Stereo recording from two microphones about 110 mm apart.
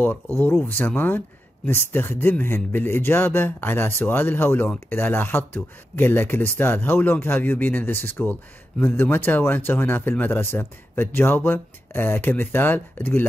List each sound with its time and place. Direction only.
0.7 s speech: 15° left (ahead or behind)